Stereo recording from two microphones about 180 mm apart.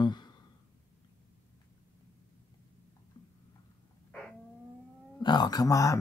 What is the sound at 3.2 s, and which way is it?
Tick-tock, 25° left (ahead or behind).